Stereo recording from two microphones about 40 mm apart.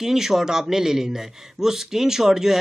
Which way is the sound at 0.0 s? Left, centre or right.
Centre.